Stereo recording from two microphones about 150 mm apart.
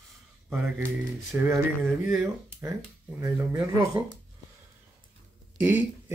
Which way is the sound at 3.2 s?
20° right (ahead or behind).